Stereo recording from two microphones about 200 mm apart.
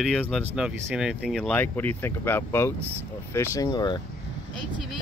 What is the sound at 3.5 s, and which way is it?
Speech, 20° left (ahead or behind).